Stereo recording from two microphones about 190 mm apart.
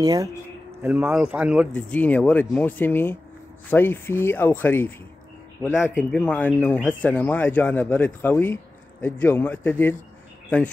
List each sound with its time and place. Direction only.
0.0 s speech: 20° right (ahead or behind)
1.7 s speech: 5° left (ahead or behind)